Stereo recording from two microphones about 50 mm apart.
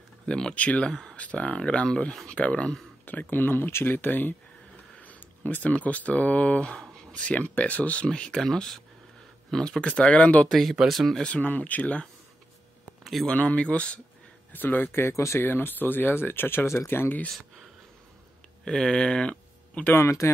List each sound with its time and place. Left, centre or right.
0.3 s speech: centre
3.1 s speech: left
4.9 s a sound: left
5.7 s speech: left
8.4 s speech: centre; by 10.5 s left
10.5 s speech: centre
11.4 s speech: left
13.0 s a sound: centre
13.3 s speech: left
14.5 s speech: left
16.6 s speech: left
18.7 s speech: centre
19.9 s speech: left